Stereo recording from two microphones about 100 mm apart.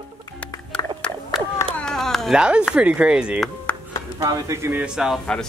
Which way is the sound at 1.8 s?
5° left (ahead or behind).